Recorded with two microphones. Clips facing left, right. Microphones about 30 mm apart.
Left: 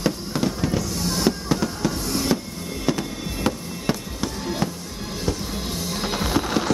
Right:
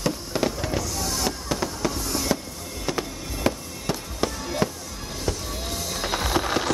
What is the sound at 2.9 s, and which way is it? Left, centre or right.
Music, centre.